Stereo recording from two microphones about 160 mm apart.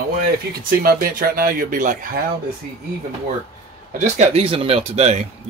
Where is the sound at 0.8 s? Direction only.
70° right (ahead or behind).